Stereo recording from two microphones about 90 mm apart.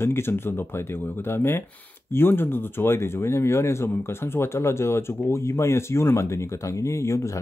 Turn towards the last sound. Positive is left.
turn(degrees=35)  # may be behind; listen again after turning